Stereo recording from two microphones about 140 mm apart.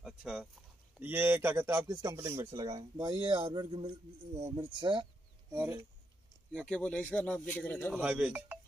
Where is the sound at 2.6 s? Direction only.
35° right (ahead or behind).